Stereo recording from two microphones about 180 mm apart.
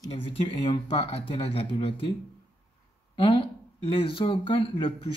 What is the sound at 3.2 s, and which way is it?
Speech, 30° left (ahead or behind).